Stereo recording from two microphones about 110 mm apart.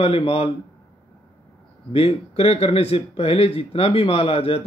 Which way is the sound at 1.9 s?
60° left (ahead or behind).